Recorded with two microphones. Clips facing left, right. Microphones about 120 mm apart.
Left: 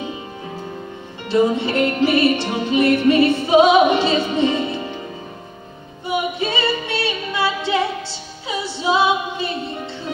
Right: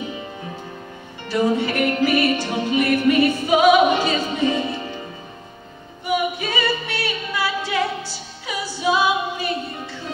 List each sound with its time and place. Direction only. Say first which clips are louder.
1.3 s music: left 3 dB; 25° left (ahead or behind)
6.0 s music: left 1 dB; 25° left (ahead or behind)